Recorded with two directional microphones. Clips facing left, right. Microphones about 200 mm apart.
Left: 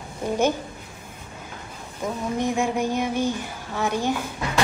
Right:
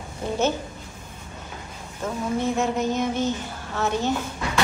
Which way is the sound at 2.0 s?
15° left (ahead or behind).